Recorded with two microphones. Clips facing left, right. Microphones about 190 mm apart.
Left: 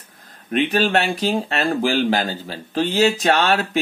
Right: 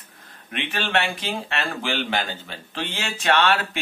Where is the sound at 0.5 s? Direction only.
40° left (ahead or behind).